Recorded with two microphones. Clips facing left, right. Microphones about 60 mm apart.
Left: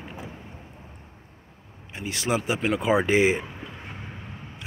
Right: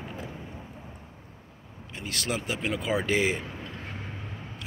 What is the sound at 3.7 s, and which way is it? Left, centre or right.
Vehicle, centre.